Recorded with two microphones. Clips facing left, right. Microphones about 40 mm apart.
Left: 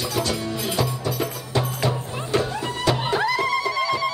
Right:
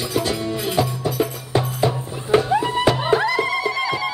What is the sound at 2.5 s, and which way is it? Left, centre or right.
Music, right.